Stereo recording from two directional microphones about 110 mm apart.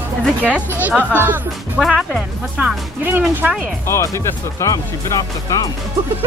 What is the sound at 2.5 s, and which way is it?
Speech, 15° right (ahead or behind).